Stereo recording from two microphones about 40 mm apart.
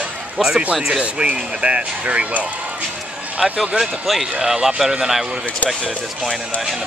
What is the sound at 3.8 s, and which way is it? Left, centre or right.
Speech, centre.